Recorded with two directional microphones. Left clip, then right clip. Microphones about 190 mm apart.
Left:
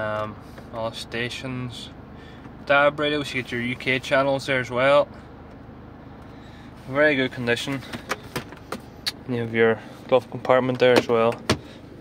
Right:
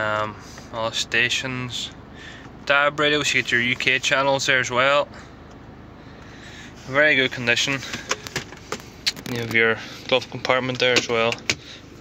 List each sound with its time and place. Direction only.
0.0 s a sound: 5° left (ahead or behind)
0.7 s speech: 5° left (ahead or behind)
6.9 s speech: 15° left (ahead or behind)
8.4 s power windows: 25° left (ahead or behind)
9.5 s speech: 10° left (ahead or behind)